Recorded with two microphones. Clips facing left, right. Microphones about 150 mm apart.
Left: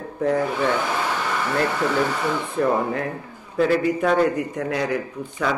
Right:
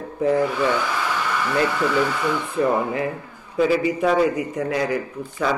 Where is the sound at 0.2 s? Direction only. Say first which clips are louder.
Right 2 dB; centre (ahead or behind).